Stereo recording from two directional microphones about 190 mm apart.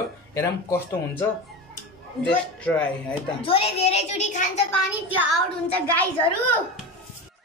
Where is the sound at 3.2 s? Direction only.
30° left (ahead or behind).